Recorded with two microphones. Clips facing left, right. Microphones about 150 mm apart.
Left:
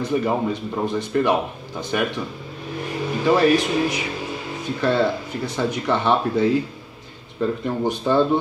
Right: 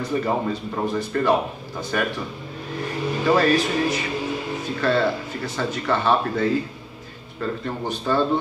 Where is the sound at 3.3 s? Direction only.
15° left (ahead or behind).